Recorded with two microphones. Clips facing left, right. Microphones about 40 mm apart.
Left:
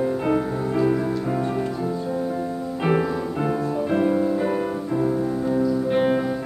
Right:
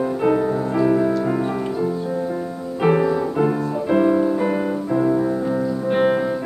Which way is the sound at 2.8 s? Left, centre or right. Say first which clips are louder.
Right 5 dB; centre.